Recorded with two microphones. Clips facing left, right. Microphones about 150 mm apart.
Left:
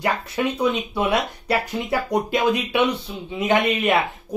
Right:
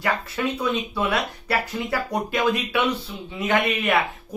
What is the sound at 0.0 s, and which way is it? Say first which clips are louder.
Speech: left 2 dB; 20° left (ahead or behind).